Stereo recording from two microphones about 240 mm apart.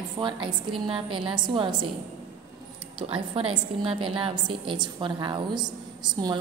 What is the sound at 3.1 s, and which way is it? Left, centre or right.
A woman's voice, right.